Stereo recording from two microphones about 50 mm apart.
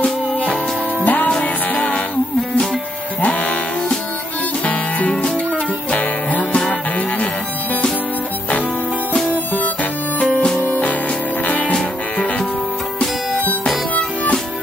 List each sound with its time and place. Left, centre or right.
0.0 s music: left
3.2 s music: left
4.6 s music: left
10.6 s music: left